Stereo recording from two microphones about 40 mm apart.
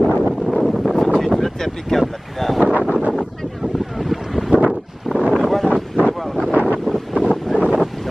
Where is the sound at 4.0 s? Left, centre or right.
Centre.